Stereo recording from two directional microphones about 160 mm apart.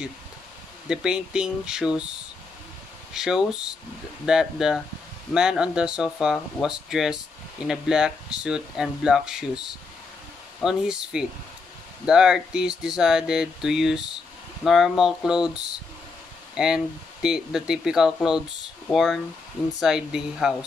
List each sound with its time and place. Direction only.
0.8 s speech: 5° right (ahead or behind)
3.1 s speech: 5° right (ahead or behind)